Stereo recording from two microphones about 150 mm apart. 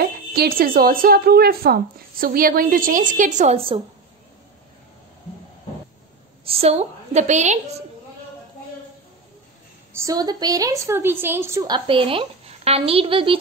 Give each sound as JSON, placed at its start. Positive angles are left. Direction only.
{"t": 0.0, "sound": "speech", "side_deg": -90}
{"t": 3.5, "sound": "a woman's voice", "side_deg": -40}
{"t": 6.4, "sound": "a woman's voice", "side_deg": -40}
{"t": 9.9, "sound": "a woman's voice", "side_deg": -25}
{"t": 11.6, "sound": "a woman's voice", "side_deg": -30}